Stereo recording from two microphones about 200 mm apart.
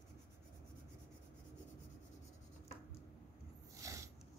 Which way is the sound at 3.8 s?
15° right (ahead or behind).